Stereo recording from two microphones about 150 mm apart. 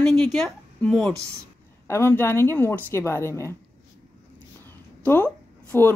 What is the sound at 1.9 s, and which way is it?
A woman's voice, 15° left (ahead or behind).